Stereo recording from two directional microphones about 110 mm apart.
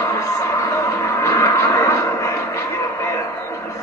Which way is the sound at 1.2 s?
25° left (ahead or behind).